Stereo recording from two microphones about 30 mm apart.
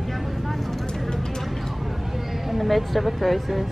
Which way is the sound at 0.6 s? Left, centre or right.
Centre.